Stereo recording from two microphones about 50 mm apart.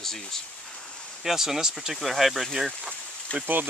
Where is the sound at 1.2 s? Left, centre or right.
Centre.